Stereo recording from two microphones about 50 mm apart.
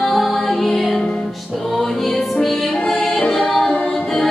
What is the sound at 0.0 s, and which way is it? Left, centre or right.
Music, centre.